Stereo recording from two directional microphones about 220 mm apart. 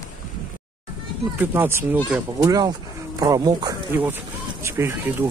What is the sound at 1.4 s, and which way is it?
Speech, 10° right (ahead or behind).